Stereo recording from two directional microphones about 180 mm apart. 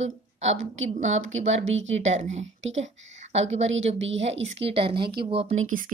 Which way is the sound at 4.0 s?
90° right.